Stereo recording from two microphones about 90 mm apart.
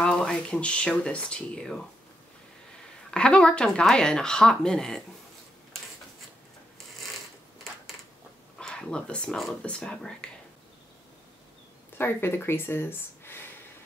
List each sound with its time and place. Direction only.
0.0 s speech: 10° left (ahead or behind)
3.1 s speech: 10° left (ahead or behind)
8.5 s speech: 10° left (ahead or behind)
12.0 s speech: 25° left (ahead or behind)